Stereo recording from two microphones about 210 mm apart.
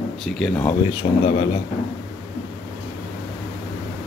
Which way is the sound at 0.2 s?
5° left (ahead or behind).